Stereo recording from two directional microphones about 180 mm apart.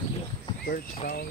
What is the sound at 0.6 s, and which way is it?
Speech, 55° left (ahead or behind).